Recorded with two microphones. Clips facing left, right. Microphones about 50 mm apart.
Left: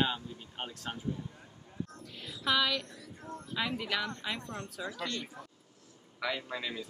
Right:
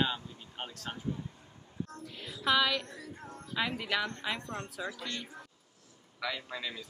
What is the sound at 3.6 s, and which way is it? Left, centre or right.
Speech, centre.